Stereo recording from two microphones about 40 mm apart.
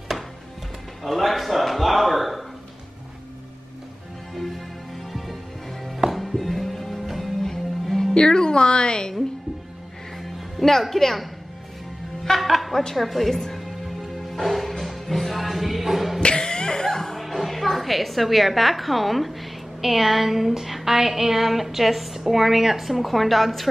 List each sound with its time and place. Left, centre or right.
0.1 s music: centre
1.0 s speech: centre
5.1 s music: centre
8.1 s speech: centre
10.1 s music: centre
12.3 s music: centre
12.9 s speech: centre
13.6 s music: centre
16.2 s music: left
17.2 s a woman's voice: centre